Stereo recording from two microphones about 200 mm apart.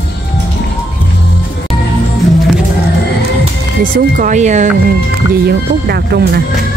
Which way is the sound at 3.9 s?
40° right (ahead or behind).